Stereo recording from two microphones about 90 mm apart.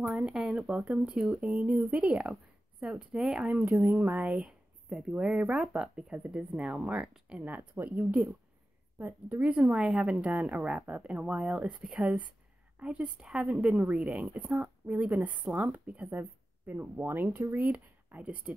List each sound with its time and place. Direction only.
0.1 s speech: 5° right (ahead or behind)
3.7 s a woman's voice: 20° right (ahead or behind)